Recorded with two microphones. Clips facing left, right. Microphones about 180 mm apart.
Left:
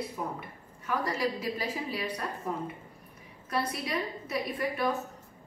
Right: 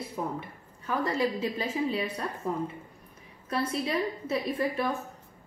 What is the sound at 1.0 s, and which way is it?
A woman's voice, 25° right (ahead or behind).